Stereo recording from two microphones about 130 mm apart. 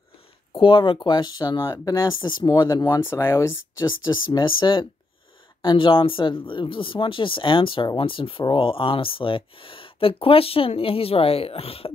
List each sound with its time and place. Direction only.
0.5 s speech: 40° left (ahead or behind)
3.0 s speech: 20° left (ahead or behind)
3.8 s speech: 35° left (ahead or behind)